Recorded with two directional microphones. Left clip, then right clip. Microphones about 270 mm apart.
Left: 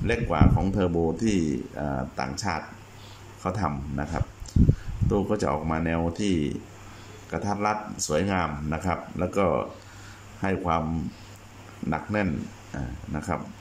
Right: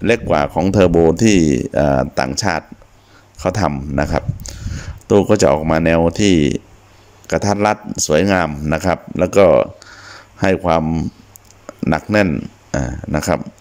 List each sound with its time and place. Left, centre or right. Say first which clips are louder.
0.0 s speech: right 11 dB; right